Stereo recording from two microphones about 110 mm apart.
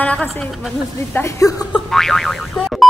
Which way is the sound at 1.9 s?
5° left (ahead or behind).